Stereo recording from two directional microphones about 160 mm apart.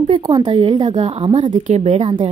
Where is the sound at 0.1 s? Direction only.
30° right (ahead or behind).